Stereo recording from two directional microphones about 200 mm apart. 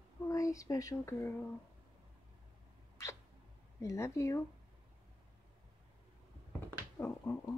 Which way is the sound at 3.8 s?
15° left (ahead or behind).